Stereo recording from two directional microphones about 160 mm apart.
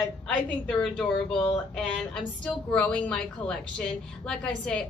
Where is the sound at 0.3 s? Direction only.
5° left (ahead or behind).